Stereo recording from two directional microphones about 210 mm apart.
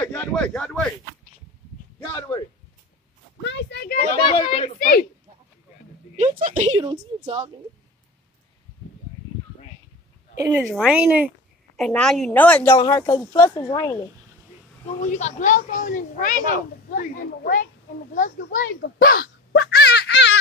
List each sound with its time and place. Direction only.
0.0 s a sound: 5° left (ahead or behind)
2.0 s speech: 15° left (ahead or behind)
3.4 s speech: 55° left (ahead or behind)
4.2 s speech: 20° left (ahead or behind)
4.7 s speech: 40° left (ahead or behind)
6.1 s a woman's voice: 40° right (ahead or behind)
6.8 s a woman's voice: 20° right (ahead or behind)
10.4 s a woman's voice: 15° right (ahead or behind)
10.7 s a woman's voice: 5° right (ahead or behind)
11.8 s a woman's voice: 5° left (ahead or behind); by 13.9 s 20° left (ahead or behind)
15.0 s a child's voice: 35° left (ahead or behind); by 20.3 s 55° left (ahead or behind)